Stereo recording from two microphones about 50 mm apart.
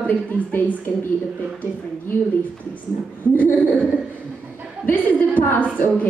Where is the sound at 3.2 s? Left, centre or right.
Left.